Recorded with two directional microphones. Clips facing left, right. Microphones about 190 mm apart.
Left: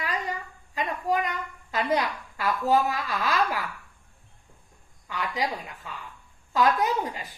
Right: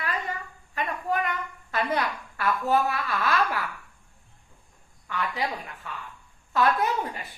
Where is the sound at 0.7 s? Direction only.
15° left (ahead or behind).